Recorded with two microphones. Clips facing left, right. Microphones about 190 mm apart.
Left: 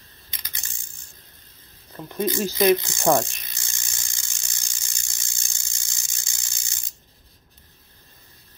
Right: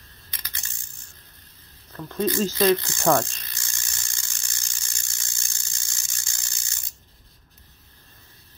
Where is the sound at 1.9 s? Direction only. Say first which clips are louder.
Right 1 dB; 15° left (ahead or behind).